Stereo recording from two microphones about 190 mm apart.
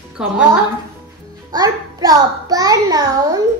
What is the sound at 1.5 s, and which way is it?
A child's voice, 20° right (ahead or behind).